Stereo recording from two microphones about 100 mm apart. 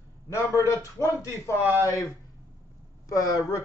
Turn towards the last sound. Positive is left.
turn(degrees=35)  # may be behind; listen again after turning